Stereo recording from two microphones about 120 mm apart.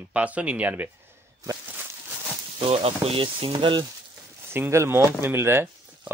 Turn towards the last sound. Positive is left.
turn(degrees=-20)  # may be behind; listen again after turning